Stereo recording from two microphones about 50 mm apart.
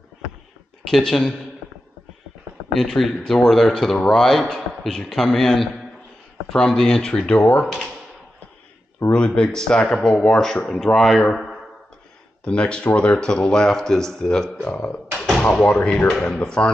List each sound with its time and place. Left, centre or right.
0.8 s speech: centre
2.7 s speech: centre; by 7.6 s left
7.6 s speech: centre
9.1 s speech: left
12.4 s speech: left
14.6 s speech: left